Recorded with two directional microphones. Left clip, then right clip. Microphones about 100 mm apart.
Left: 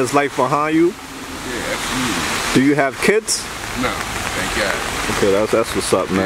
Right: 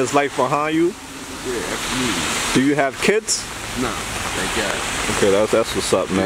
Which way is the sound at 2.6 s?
15° right (ahead or behind).